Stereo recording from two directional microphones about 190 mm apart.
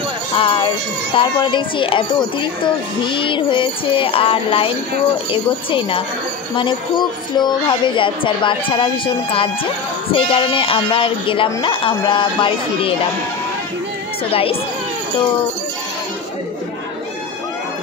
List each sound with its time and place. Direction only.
0.3 s a woman's voice: 25° left (ahead or behind)
14.3 s a woman's voice: 30° left (ahead or behind)